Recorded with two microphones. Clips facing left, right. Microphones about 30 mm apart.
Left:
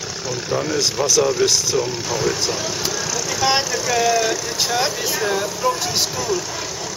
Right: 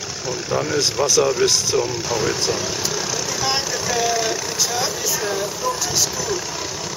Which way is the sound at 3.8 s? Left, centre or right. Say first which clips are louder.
Left 3 dB; centre.